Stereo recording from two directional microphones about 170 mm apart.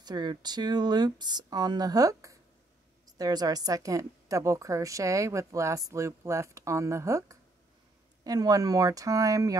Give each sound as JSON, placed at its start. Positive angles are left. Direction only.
{"t": 0.0, "sound": "a woman's voice", "side_deg": -25}